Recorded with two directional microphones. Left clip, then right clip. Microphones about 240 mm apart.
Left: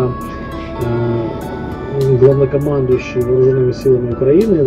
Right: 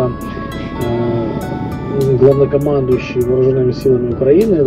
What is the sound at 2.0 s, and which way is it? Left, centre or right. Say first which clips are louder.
Speech: even; centre.